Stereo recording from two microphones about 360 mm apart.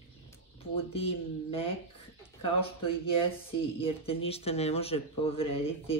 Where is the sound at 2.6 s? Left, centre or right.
Centre.